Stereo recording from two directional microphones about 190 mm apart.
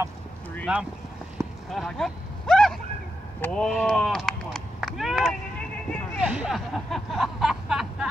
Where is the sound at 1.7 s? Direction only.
Centre (ahead or behind).